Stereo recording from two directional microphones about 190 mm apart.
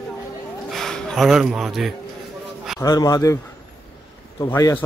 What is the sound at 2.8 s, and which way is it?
Speech, 20° left (ahead or behind).